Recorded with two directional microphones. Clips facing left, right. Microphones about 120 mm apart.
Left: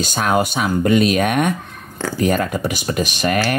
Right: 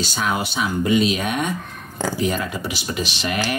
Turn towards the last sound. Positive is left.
turn(degrees=50)  # may be behind; listen again after turning